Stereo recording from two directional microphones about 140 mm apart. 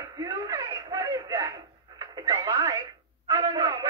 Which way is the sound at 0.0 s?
25° right (ahead or behind).